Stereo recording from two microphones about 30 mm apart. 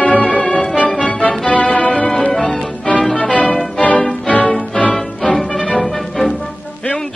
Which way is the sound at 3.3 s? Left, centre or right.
Left.